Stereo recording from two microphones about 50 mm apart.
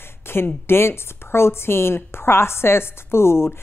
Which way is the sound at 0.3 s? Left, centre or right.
Left.